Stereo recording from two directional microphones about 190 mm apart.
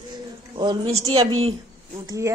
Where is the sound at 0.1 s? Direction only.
20° right (ahead or behind).